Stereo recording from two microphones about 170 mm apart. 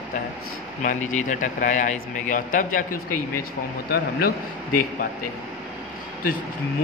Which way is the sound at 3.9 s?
60° left (ahead or behind).